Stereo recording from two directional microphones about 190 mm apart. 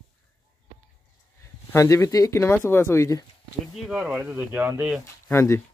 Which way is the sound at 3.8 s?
Centre (ahead or behind).